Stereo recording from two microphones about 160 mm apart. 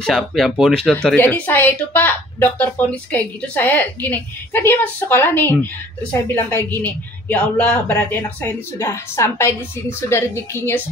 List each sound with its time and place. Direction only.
0.0 s speech: centre (ahead or behind)